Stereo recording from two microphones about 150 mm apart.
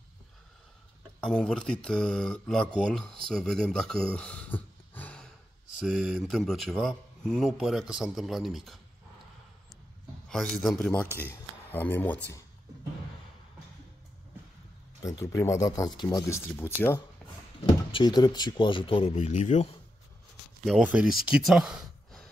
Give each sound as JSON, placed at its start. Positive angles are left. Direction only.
{"t": 1.2, "sound": "speech", "side_deg": 5}
{"t": 5.8, "sound": "speech", "side_deg": -5}
{"t": 10.2, "sound": "speech", "side_deg": 5}
{"t": 15.0, "sound": "speech", "side_deg": 20}
{"t": 16.3, "sound": "speech", "side_deg": 15}
{"t": 17.2, "sound": "a sound", "side_deg": 5}
{"t": 17.9, "sound": "speech", "side_deg": 30}
{"t": 20.6, "sound": "speech", "side_deg": -5}